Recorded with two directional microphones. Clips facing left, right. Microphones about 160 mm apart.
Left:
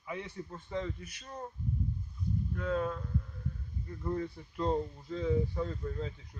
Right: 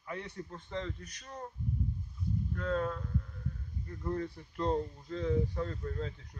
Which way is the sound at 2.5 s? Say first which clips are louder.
Even; 5° left (ahead or behind).